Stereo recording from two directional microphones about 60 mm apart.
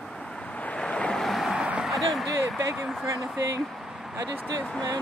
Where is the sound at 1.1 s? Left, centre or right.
Centre.